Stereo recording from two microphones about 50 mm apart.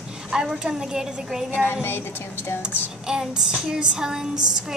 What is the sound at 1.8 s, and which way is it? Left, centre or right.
Speech, left.